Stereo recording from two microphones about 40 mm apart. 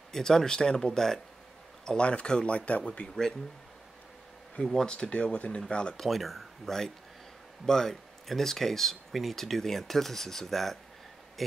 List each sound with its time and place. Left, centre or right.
0.1 s speech: centre
1.9 s speech: left
4.8 s speech: left
6.0 s speech: centre